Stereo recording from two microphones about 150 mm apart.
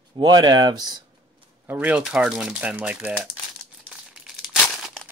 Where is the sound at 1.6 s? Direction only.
10° right (ahead or behind).